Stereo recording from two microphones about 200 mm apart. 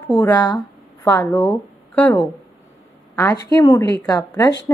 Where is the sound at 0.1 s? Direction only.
15° left (ahead or behind).